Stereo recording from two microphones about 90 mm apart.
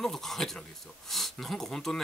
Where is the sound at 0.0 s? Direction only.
5° left (ahead or behind).